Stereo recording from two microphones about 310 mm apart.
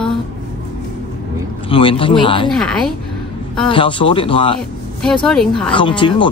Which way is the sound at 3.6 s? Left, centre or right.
Centre.